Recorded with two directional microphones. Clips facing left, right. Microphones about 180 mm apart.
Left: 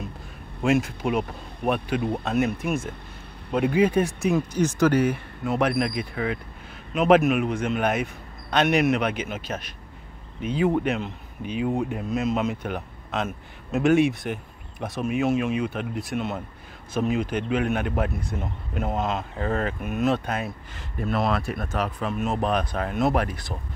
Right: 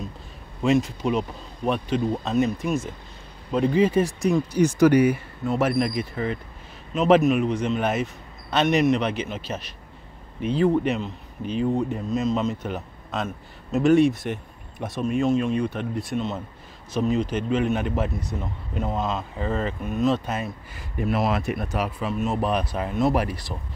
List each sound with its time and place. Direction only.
0.6 s a man's voice: 5° left (ahead or behind)
2.0 s speech: 60° left (ahead or behind)
3.7 s a man's voice: centre (ahead or behind)
4.6 s speech: 10° right (ahead or behind)
5.4 s a man's voice: centre (ahead or behind)